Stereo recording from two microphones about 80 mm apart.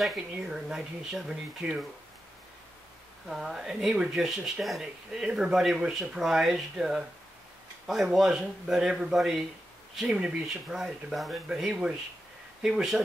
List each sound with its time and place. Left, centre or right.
0.0 s speech: centre
3.3 s speech: centre